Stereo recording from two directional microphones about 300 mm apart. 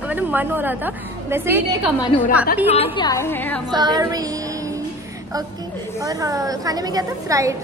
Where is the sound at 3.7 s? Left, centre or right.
Centre.